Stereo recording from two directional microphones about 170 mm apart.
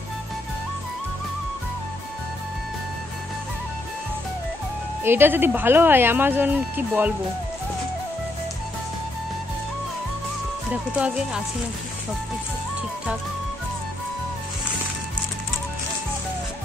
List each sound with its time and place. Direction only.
5.0 s speech: 10° right (ahead or behind)
10.7 s speech: 5° right (ahead or behind)